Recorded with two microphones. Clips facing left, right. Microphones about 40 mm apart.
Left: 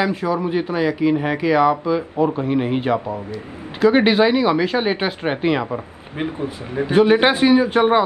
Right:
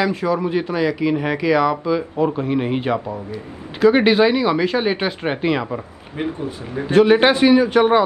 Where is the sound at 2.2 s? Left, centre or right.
Centre.